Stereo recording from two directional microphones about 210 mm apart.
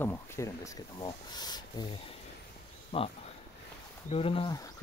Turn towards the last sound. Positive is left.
turn(degrees=25)  # may be behind; listen again after turning